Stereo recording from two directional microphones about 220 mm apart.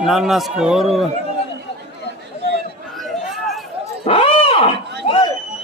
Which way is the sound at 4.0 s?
25° left (ahead or behind).